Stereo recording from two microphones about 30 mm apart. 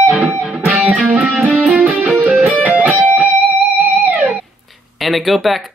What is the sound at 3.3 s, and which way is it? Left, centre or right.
Music, right.